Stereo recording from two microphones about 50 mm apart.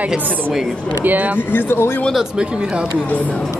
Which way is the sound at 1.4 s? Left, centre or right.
Left.